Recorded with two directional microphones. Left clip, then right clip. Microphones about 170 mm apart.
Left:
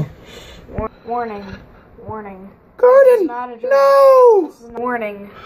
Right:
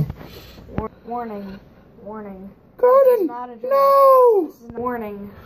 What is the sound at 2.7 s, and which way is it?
Speech, 5° left (ahead or behind).